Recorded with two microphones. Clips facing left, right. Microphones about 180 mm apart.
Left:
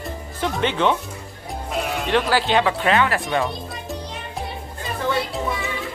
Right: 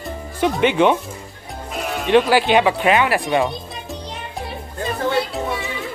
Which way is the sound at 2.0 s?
15° right (ahead or behind).